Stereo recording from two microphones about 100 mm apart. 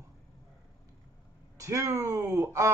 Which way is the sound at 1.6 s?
35° right (ahead or behind).